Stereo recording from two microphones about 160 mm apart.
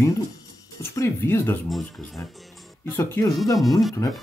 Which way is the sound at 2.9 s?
15° left (ahead or behind).